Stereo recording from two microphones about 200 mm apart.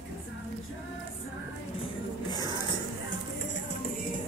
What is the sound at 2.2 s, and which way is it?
Music, 20° left (ahead or behind).